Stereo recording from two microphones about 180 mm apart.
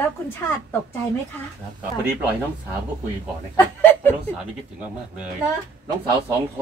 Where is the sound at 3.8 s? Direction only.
10° left (ahead or behind).